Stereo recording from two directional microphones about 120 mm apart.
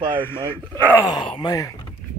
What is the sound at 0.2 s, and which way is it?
Speech, 20° left (ahead or behind).